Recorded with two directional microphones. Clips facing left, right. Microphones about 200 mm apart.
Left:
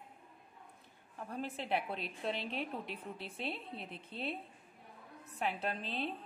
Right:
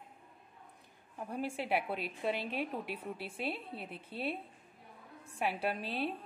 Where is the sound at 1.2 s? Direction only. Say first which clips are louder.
Right 3 dB; 10° right (ahead or behind).